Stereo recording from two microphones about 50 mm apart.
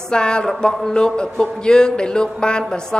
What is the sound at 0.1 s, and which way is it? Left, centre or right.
A woman's voice, centre.